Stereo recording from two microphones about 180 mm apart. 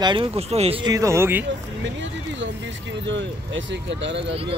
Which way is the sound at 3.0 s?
90° right.